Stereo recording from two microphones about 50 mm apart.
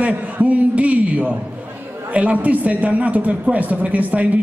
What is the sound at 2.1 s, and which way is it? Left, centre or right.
A man's voice, right.